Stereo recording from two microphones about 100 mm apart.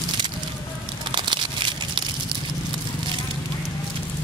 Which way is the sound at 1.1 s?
55° right (ahead or behind).